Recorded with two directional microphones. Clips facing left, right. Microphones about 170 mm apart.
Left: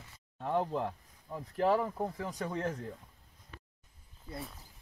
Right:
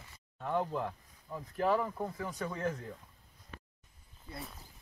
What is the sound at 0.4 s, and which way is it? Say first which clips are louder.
Speech: left 2 dB; 25° left (ahead or behind).